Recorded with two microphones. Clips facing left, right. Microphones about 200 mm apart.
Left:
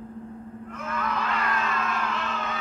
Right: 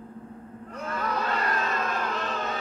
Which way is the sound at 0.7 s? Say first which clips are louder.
Right 1 dB; 35° right (ahead or behind).